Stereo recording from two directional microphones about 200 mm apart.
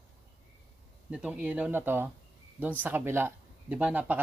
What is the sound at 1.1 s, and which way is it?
Speech, 5° right (ahead or behind).